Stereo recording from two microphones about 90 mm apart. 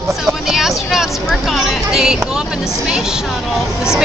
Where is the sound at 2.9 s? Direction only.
5° right (ahead or behind).